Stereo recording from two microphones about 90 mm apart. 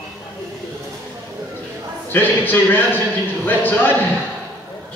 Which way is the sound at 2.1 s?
25° left (ahead or behind).